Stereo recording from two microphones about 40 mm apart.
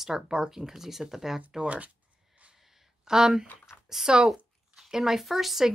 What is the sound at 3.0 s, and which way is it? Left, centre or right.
Speech, centre.